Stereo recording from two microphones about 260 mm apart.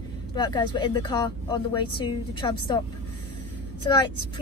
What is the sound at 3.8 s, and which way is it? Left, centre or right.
Speech, centre.